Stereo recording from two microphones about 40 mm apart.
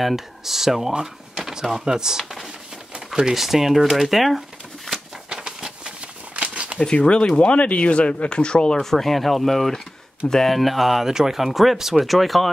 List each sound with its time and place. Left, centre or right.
0.0 s speech: centre
3.3 s speech: centre
5.3 s a sound: centre
7.0 s speech: left
8.9 s speech: centre